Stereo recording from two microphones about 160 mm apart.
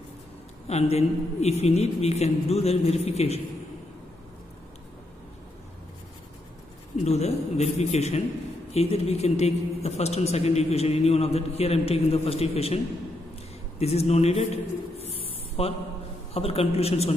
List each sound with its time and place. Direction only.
0.7 s a man's voice: 40° left (ahead or behind)
7.1 s a man's voice: 40° left (ahead or behind)